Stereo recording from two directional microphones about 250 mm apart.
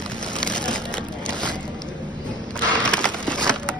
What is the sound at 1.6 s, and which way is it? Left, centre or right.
Vehicle, centre.